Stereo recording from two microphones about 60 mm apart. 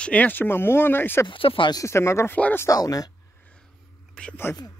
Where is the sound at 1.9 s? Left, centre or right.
Left.